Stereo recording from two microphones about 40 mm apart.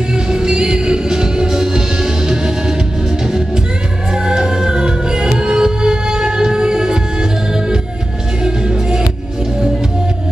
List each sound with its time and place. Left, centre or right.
0.1 s music: centre